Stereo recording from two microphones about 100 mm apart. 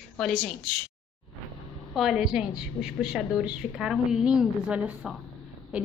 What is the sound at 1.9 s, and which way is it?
A woman's voice, 5° right (ahead or behind).